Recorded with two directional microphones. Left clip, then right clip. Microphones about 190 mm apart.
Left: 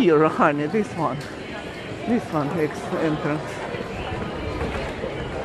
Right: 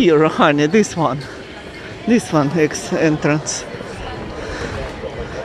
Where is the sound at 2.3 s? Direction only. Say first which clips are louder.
Right 8 dB; 50° right (ahead or behind).